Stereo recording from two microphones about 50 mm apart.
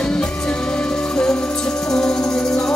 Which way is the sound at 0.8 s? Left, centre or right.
Centre.